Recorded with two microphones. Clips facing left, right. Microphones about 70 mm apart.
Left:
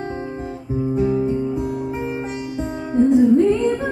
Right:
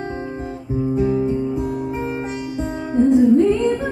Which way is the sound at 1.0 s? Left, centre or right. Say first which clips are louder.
Even; centre.